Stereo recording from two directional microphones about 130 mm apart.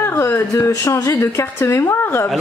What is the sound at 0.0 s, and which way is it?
A woman's voice, 20° left (ahead or behind).